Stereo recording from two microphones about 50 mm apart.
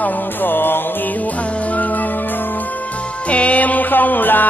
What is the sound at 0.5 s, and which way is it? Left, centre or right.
Music, left.